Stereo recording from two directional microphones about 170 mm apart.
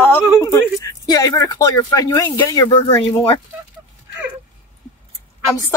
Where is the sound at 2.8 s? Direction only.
30° left (ahead or behind).